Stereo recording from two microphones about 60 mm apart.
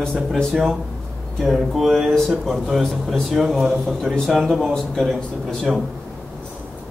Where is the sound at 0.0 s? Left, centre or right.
Centre.